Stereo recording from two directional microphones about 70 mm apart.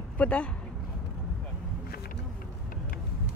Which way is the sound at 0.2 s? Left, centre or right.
Centre.